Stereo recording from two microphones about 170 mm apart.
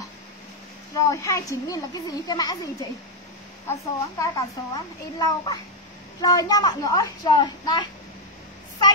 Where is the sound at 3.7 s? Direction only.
20° left (ahead or behind).